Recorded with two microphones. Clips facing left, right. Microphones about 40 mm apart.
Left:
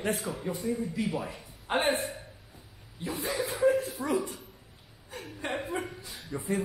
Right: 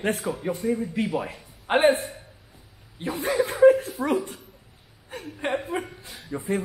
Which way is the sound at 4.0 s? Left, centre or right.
Right.